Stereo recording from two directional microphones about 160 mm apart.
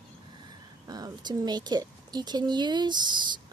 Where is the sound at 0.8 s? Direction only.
25° right (ahead or behind).